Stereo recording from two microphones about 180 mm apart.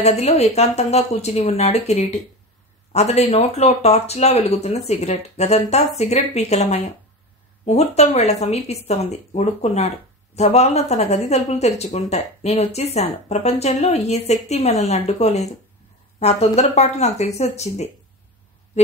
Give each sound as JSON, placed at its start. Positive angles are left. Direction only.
{"t": 0.0, "sound": "speech", "side_deg": 35}